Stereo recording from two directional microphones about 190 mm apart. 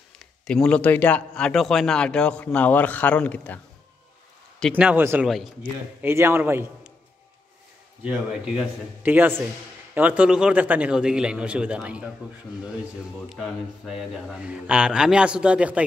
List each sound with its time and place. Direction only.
0.5 s a man's voice: 5° left (ahead or behind); by 5.3 s 10° right (ahead or behind)
5.3 s a man's voice: centre (ahead or behind)
6.0 s a man's voice: 10° right (ahead or behind)
8.0 s a man's voice: 5° right (ahead or behind)
13.3 s a man's voice: centre (ahead or behind)